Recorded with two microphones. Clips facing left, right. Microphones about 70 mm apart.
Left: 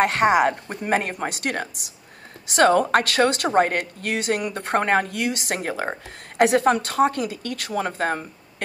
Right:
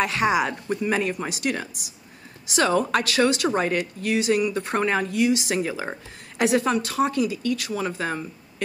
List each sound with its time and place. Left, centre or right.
0.0 s speech: left